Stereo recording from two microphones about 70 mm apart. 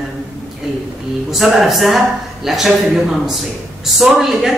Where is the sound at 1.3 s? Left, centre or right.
Centre.